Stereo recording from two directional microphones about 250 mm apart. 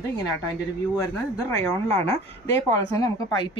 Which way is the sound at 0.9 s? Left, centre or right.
Centre.